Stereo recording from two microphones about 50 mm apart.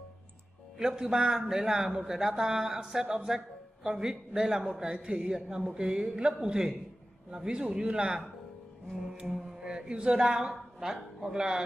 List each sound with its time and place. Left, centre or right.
0.7 s a man's voice: centre
9.3 s speech: centre